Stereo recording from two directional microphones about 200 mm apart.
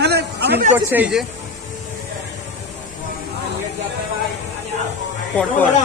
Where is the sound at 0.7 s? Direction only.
10° right (ahead or behind).